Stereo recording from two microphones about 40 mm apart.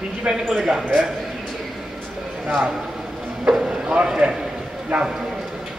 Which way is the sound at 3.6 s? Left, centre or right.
Right.